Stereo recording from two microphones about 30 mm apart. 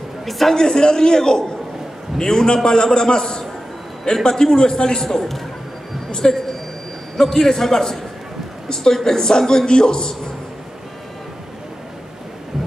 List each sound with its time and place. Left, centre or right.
0.2 s a man's voice: centre
0.6 s a man's voice: left
6.2 s a man's voice: left